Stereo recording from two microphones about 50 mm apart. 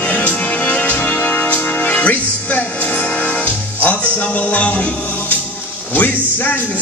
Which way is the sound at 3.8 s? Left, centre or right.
Left.